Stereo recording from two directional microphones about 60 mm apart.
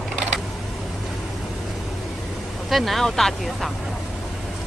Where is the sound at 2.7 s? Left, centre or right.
Centre.